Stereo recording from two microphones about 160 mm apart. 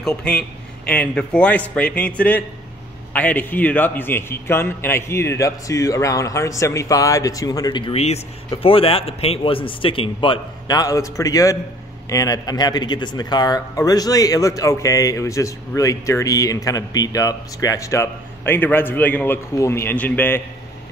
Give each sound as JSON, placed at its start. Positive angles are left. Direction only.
{"t": 0.0, "sound": "a man's voice", "side_deg": 5}